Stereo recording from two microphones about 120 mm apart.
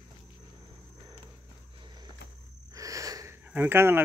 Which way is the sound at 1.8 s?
35° right (ahead or behind).